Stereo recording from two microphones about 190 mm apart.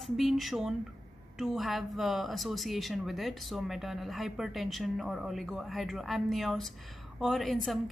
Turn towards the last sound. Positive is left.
turn(degrees=0)  # may be behind; listen again after turning